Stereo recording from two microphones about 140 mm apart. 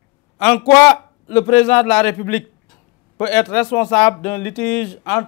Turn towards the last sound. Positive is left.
turn(degrees=10)  # may be behind; listen again after turning